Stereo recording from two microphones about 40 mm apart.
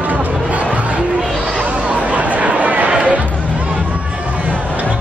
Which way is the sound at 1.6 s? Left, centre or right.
Right.